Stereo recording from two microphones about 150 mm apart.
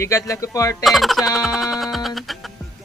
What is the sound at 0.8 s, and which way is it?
Speech, centre (ahead or behind).